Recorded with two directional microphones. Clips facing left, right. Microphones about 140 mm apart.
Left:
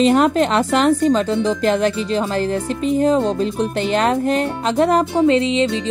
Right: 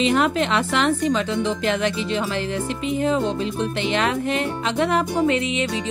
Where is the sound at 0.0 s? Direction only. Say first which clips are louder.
Left 5 dB; 40° left (ahead or behind).